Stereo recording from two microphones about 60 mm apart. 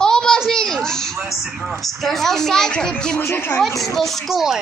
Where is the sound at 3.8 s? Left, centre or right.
Centre.